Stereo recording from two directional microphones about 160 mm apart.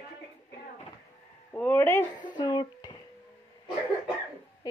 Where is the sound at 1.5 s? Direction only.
10° left (ahead or behind).